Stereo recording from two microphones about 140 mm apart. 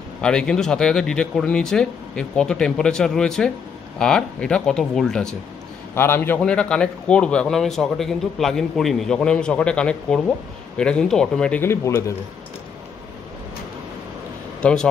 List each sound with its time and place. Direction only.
0.2 s speech: 5° left (ahead or behind)
5.9 s a man's voice: 15° left (ahead or behind)
11.6 s speech: 20° left (ahead or behind)
14.6 s speech: 5° left (ahead or behind)